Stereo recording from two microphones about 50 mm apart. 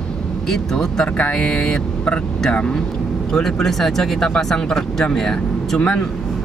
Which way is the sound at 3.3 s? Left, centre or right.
Centre.